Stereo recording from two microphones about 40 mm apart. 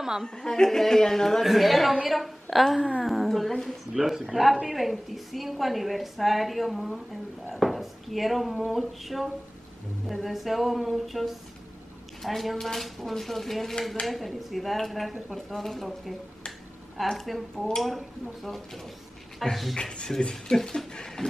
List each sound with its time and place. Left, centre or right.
0.4 s speech: centre
1.4 s a woman's voice: centre
3.9 s a woman's voice: centre
19.8 s speech: left